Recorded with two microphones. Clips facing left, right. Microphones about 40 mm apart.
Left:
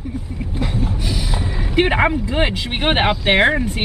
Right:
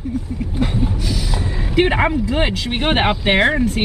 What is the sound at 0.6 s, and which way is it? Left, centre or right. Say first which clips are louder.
Vehicle: right 3 dB; centre.